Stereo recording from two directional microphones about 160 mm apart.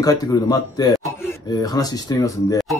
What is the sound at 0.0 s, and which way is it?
Speech, 25° left (ahead or behind).